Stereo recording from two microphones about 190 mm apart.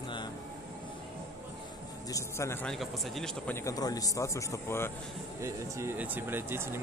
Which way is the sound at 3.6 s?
20° left (ahead or behind).